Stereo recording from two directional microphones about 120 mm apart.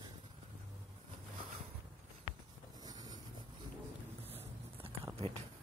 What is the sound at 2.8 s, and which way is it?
Wind noise, 35° right (ahead or behind).